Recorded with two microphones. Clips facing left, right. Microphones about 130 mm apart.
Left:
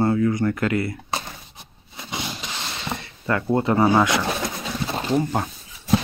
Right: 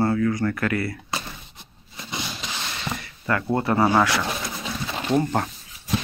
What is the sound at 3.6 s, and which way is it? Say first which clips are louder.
Speech: left 2 dB; 20° left (ahead or behind).